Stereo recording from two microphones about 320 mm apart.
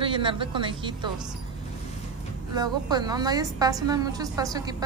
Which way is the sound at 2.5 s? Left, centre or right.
Centre.